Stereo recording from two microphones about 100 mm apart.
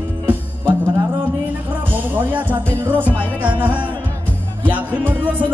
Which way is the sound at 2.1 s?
15° right (ahead or behind).